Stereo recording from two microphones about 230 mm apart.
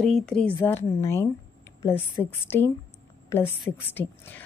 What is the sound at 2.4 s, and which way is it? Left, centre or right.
A woman's voice, centre.